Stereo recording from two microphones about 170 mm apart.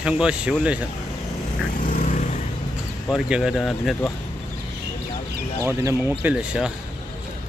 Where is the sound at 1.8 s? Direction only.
50° left (ahead or behind).